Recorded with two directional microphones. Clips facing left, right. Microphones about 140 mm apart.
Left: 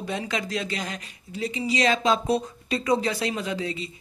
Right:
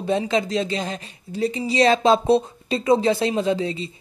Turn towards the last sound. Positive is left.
turn(degrees=-30)  # may be behind; listen again after turning